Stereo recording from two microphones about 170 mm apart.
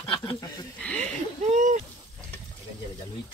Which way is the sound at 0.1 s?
25° left (ahead or behind).